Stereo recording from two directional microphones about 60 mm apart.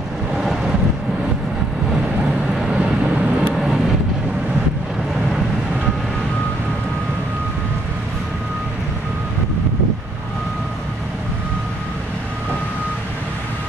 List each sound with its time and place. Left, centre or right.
2.5 s vehicle: centre
3.5 s vehicle: centre